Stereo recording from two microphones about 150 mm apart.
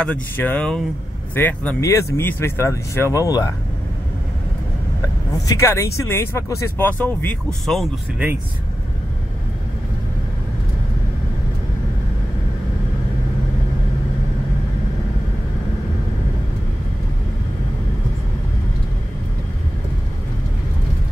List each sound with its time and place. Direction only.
0.0 s speech: 10° left (ahead or behind)
5.3 s speech: 20° left (ahead or behind)
7.6 s speech: centre (ahead or behind)